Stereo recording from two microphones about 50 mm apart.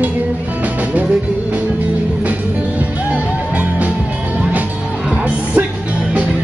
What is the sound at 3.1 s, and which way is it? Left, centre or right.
Music, right.